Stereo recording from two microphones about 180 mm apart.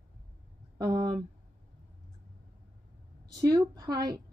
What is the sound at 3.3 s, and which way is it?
Speech, 20° right (ahead or behind).